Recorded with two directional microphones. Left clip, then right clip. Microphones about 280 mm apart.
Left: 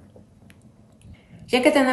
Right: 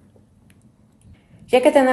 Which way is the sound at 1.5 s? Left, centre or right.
Right.